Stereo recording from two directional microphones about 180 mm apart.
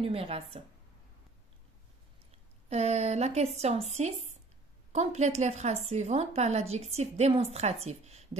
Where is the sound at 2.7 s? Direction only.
35° right (ahead or behind).